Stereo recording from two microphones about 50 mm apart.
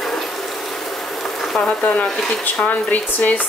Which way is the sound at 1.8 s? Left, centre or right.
Left.